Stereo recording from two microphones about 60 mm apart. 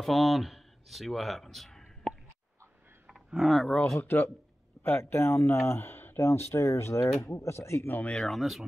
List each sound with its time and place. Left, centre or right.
0.0 s speech: centre
3.3 s speech: centre
4.0 s speech: left
8.1 s speech: centre